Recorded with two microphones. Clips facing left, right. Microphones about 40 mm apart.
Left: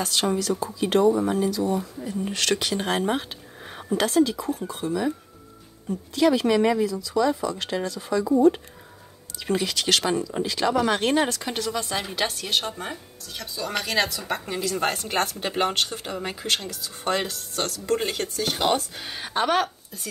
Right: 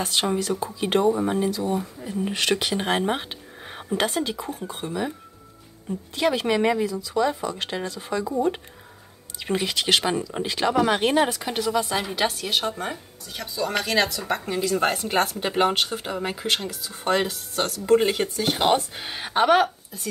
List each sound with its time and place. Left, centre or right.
0.0 s speech: right
2.0 s speech: centre
6.1 s speech: right
9.4 s speech: right
10.4 s speech: right
10.8 s a woman's voice: centre